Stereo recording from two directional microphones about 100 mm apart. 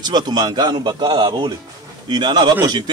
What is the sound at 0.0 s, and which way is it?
A man's voice, 45° right (ahead or behind).